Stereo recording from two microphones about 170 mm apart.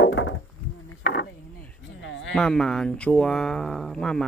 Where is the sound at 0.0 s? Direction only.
90° left.